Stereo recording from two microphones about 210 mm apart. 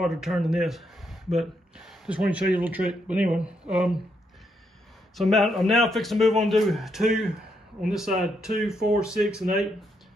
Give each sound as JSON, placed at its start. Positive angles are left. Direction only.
{"t": 0.0, "sound": "speech", "side_deg": 0}
{"t": 5.1, "sound": "speech", "side_deg": 0}